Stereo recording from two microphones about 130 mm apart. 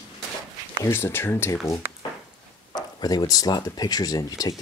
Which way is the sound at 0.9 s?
20° left (ahead or behind).